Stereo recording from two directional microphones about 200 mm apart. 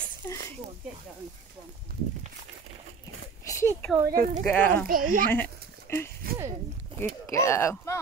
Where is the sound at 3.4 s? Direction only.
10° left (ahead or behind).